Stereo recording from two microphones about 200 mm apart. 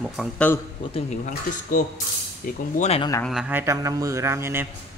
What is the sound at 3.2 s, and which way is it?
Speech, centre (ahead or behind).